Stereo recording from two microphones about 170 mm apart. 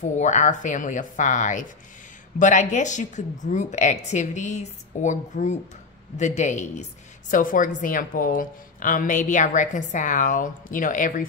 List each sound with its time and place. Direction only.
0.0 s a woman's voice: 45° left (ahead or behind)